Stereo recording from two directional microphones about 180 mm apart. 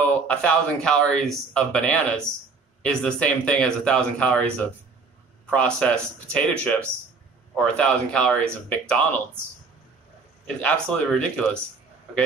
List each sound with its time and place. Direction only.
0.3 s speech: 5° left (ahead or behind)
10.4 s speech: 5° left (ahead or behind)